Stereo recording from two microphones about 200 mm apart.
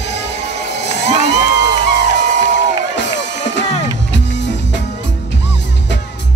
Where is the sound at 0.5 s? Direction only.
60° left (ahead or behind).